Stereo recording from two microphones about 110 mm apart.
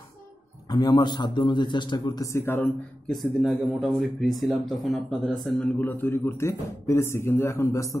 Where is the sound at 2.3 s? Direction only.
20° left (ahead or behind).